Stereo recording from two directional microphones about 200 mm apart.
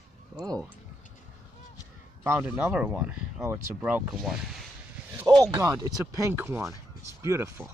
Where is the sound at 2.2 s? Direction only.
10° right (ahead or behind).